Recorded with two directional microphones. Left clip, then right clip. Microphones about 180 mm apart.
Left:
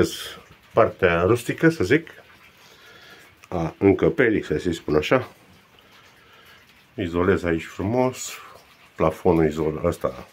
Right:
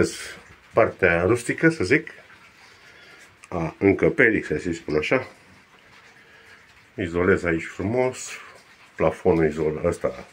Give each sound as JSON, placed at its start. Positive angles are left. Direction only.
{"t": 0.0, "sound": "speech", "side_deg": 10}
{"t": 3.4, "sound": "speech", "side_deg": 15}
{"t": 7.0, "sound": "speech", "side_deg": 15}